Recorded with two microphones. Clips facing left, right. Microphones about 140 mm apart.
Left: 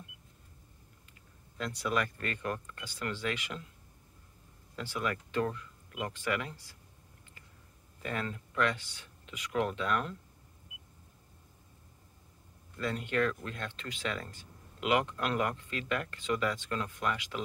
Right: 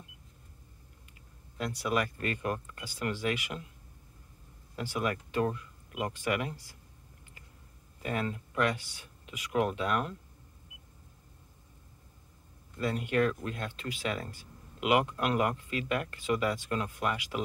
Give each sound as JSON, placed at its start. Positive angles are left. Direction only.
{"t": 1.6, "sound": "speech", "side_deg": -10}
{"t": 4.7, "sound": "speech", "side_deg": -15}
{"t": 8.0, "sound": "speech", "side_deg": -15}
{"t": 12.7, "sound": "speech", "side_deg": -15}